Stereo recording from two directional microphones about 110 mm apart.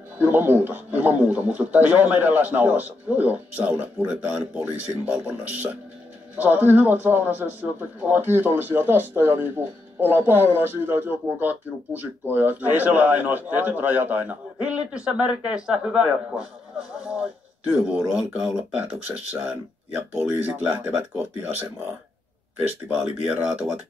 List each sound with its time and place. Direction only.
0.2 s speech: 20° right (ahead or behind)
22.6 s speech: 5° right (ahead or behind)